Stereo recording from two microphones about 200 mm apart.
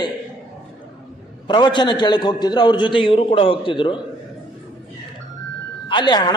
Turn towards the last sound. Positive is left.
turn(degrees=20)  # may be behind; listen again after turning